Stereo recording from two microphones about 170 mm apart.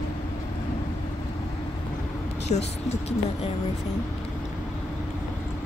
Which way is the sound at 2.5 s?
40° left (ahead or behind).